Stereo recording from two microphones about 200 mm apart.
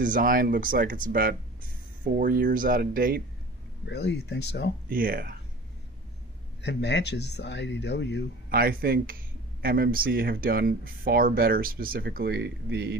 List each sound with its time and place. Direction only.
0.0 s speech: 45° right (ahead or behind)
3.8 s speech: 60° left (ahead or behind)
4.8 s speech: 45° right (ahead or behind)
6.6 s speech: 60° left (ahead or behind)
8.5 s speech: 50° right (ahead or behind)